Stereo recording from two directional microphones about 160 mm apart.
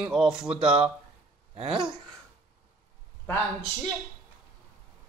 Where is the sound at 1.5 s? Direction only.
35° right (ahead or behind).